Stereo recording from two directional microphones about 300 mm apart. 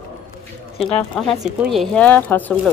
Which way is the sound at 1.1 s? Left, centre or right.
Centre.